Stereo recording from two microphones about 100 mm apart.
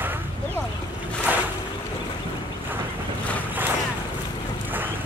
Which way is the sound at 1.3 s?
15° right (ahead or behind).